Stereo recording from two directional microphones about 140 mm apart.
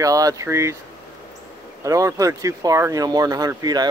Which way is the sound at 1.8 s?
25° right (ahead or behind).